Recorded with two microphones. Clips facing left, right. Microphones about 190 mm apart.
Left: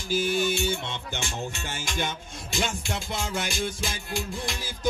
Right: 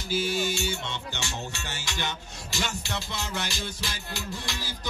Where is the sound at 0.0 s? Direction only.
50° left (ahead or behind).